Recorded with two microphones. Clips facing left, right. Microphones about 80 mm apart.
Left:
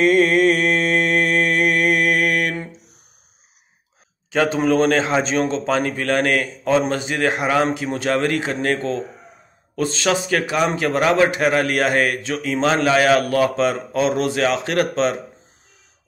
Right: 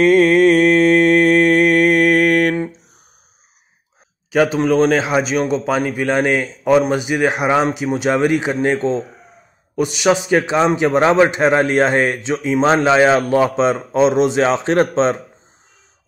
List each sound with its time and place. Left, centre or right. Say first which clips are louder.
0.0 s mantra: right 4 dB; right
4.3 s a man's voice: right 3 dB; centre; by 15.1 s right